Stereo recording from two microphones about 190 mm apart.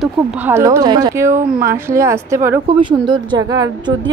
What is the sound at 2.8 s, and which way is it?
Speech, 25° right (ahead or behind).